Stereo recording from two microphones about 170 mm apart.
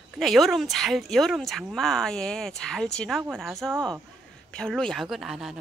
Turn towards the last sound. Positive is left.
turn(degrees=0)  # may be behind; listen again after turning